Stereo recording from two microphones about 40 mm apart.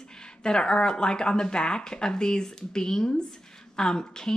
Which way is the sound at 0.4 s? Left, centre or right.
Centre.